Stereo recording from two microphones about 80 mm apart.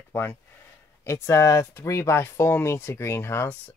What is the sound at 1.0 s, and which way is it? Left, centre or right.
Speech, left.